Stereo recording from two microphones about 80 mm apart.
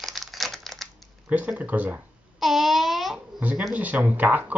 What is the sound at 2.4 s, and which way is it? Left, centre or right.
Babbling, centre.